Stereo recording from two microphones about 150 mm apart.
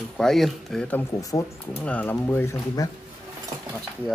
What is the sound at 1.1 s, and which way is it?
Speech, 25° left (ahead or behind).